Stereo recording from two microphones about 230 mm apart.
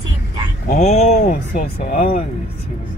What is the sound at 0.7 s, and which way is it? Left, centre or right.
Speech, left.